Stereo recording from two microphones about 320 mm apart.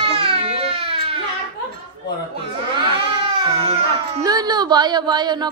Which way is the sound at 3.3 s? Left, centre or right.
Centre.